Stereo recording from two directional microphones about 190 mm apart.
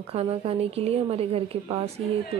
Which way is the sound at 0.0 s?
30° right (ahead or behind).